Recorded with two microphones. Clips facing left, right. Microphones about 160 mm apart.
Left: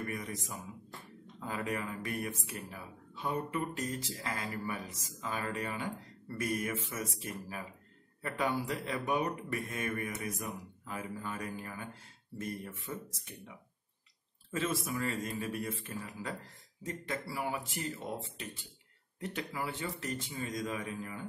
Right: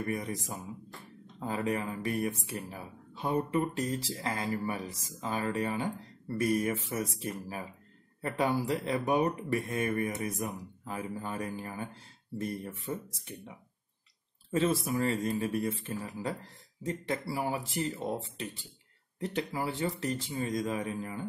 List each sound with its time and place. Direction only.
0.1 s speech: 35° right (ahead or behind)
14.5 s speech: 35° right (ahead or behind)
16.8 s speech: 30° right (ahead or behind)